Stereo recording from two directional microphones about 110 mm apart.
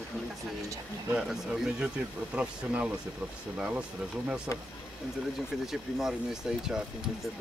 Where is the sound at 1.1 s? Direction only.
5° right (ahead or behind).